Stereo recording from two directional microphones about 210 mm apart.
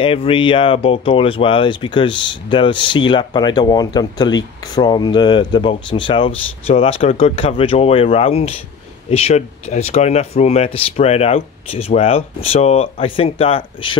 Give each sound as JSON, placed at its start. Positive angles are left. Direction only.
{"t": 0.0, "sound": "speech", "side_deg": 25}